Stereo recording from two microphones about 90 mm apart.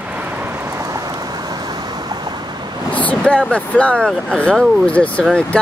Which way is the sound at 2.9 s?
15° left (ahead or behind).